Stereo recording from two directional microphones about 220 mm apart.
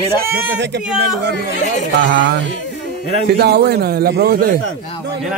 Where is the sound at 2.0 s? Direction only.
55° right (ahead or behind).